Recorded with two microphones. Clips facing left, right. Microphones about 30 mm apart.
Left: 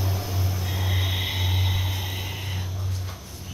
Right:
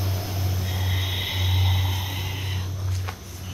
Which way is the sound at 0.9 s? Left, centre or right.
Centre.